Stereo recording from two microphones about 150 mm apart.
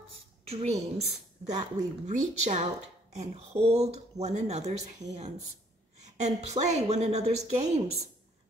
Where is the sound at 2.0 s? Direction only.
50° right (ahead or behind).